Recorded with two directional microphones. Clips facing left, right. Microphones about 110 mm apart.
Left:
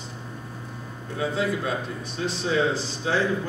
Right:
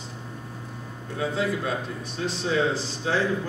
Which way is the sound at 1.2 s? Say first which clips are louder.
Left 1 dB; 5° left (ahead or behind).